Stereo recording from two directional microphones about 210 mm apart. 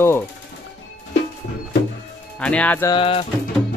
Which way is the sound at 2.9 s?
25° left (ahead or behind).